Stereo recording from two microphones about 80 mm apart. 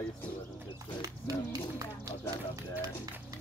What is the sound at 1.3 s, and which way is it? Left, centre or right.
Speech, right.